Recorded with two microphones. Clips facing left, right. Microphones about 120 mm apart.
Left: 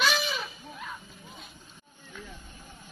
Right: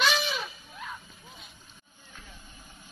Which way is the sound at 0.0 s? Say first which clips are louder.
Even; centre (ahead or behind).